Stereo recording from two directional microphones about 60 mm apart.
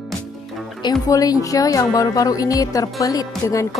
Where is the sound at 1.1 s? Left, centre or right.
Left.